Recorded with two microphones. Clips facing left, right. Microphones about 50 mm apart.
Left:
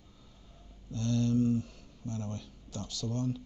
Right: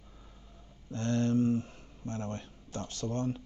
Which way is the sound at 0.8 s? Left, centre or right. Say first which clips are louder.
Right 1 dB; right.